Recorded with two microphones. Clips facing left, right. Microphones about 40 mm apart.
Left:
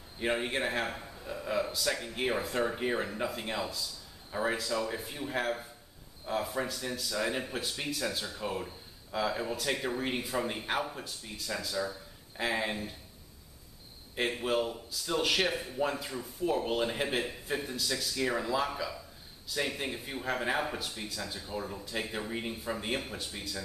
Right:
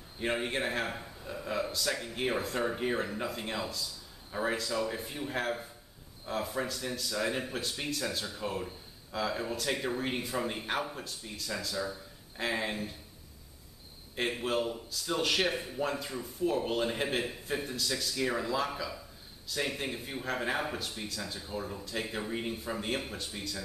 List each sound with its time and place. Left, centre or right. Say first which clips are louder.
0.2 s a man's voice: left 1 dB; centre
14.1 s a man's voice: left 1 dB; centre